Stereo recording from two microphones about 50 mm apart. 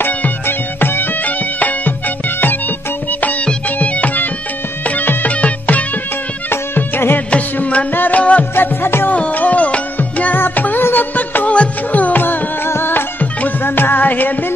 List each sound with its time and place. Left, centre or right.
0.0 s music: left
6.5 s music: left
7.5 s music: left
7.9 s music: left
8.2 s music: left
8.5 s music: left
9.1 s music: left
13.2 s music: left